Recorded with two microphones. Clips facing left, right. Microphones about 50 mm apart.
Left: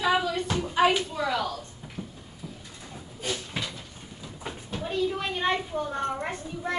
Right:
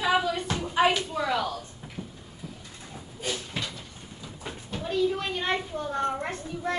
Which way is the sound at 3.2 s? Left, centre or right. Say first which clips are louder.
Even; centre.